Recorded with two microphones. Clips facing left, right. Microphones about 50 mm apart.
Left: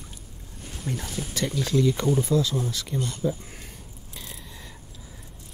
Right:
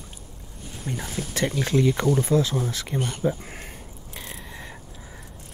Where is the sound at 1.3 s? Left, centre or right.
Right.